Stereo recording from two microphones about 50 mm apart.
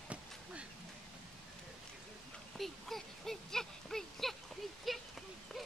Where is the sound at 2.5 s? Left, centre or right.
Centre.